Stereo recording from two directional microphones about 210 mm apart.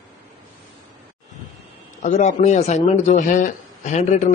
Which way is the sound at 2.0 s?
35° left (ahead or behind).